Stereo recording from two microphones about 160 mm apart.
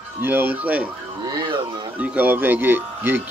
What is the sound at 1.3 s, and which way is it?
Music, 25° right (ahead or behind).